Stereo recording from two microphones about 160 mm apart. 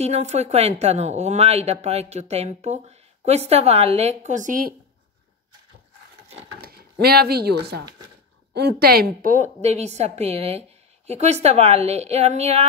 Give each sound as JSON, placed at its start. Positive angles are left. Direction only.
{"t": 0.0, "sound": "speech", "side_deg": -45}
{"t": 6.6, "sound": "speech", "side_deg": -70}